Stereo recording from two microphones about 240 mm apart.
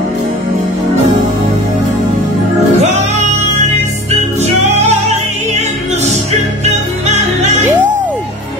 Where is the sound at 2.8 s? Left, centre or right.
Right.